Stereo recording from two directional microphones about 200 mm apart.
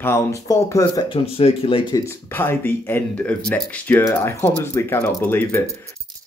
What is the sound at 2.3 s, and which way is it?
Speech, 10° left (ahead or behind).